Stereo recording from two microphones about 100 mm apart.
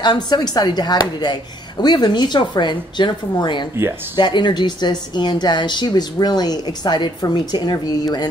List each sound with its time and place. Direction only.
0.0 s a woman's voice: 45° left (ahead or behind)